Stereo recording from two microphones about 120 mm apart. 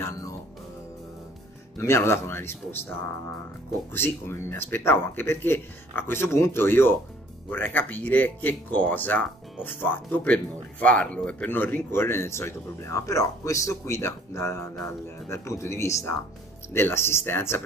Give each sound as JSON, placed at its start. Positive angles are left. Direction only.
{"t": 1.8, "sound": "speech", "side_deg": 20}